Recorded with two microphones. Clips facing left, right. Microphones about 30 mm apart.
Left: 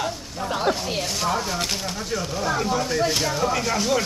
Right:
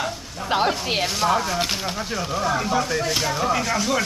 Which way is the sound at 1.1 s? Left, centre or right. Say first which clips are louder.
Right 3 dB; centre.